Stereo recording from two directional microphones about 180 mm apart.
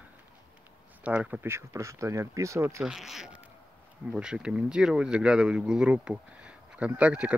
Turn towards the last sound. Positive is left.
turn(degrees=-5)  # may be behind; listen again after turning